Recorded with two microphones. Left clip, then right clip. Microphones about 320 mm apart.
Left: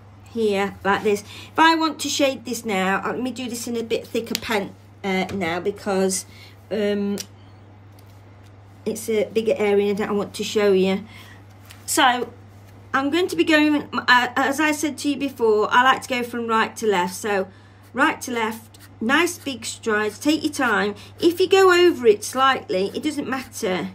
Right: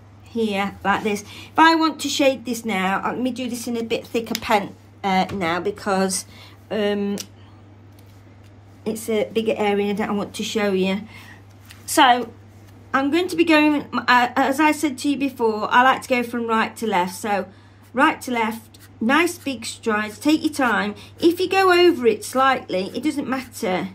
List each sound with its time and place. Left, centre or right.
0.3 s a woman's voice: centre
8.8 s a woman's voice: centre